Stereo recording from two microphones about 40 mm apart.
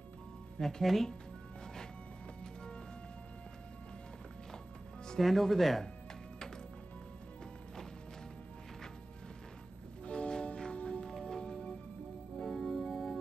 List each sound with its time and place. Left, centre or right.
0.6 s speech: centre
2.4 s music: left
5.2 s speech: centre
10.1 s music: left
11.1 s music: centre
12.4 s music: centre